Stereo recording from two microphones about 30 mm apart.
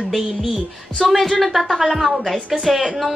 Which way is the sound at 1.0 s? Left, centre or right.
Centre.